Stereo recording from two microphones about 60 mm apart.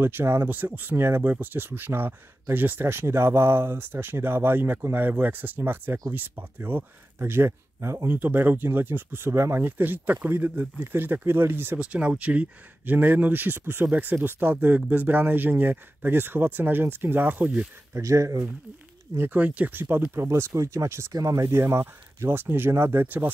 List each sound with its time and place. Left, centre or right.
0.0 s speech: right
0.9 s speech: right
8.1 s speech: right
9.6 s speech: right
11.8 s speech: centre
18.0 s speech: right
19.3 s speech: right
20.2 s speech: right
21.1 s speech: right
23.0 s speech: right